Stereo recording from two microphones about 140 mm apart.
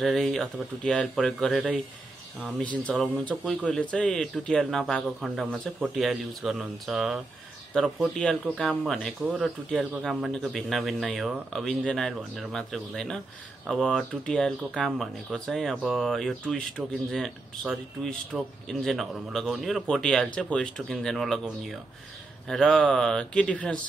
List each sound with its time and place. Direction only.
0.0 s a man's voice: centre (ahead or behind)